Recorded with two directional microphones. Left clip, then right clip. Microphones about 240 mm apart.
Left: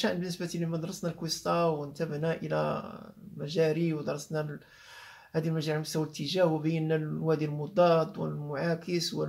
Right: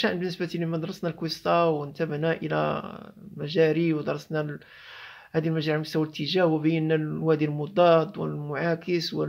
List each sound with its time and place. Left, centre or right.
0.0 s speech: right